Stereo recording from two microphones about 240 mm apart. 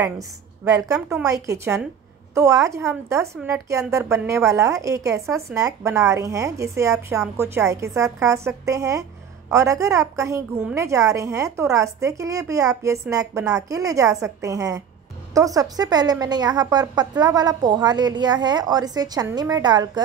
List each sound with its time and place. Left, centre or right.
0.7 s a woman's voice: centre